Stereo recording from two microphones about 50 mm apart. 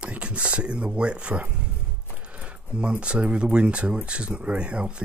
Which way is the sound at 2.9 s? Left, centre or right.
Right.